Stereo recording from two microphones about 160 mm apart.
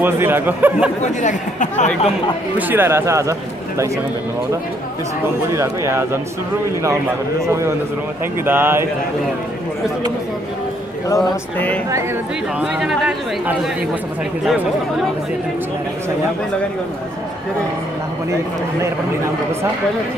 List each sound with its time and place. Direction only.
0.0 s speech: 15° right (ahead or behind)
1.0 s speech: 50° left (ahead or behind)
2.5 s speech: 15° right (ahead or behind)
5.5 s speech: 15° right (ahead or behind)
7.4 s a man's voice: 20° right (ahead or behind)
11.1 s mantra: 10° left (ahead or behind)
12.5 s speech: 5° right (ahead or behind)